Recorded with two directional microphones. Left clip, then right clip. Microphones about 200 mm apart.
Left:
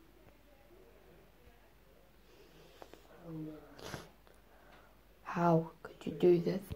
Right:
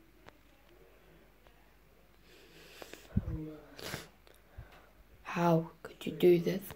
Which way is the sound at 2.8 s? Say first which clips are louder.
Right 8 dB; 25° right (ahead or behind).